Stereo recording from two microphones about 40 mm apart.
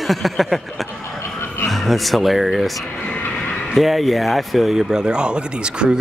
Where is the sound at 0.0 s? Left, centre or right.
Centre.